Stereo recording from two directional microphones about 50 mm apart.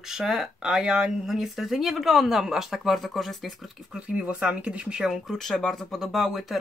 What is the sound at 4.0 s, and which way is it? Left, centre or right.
Speech, right.